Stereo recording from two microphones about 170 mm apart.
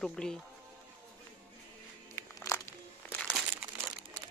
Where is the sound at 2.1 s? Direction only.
15° left (ahead or behind).